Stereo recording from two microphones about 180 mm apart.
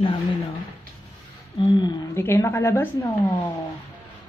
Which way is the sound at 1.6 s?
25° left (ahead or behind).